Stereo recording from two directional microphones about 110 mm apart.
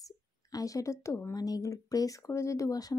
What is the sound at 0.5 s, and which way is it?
Speech, 35° left (ahead or behind).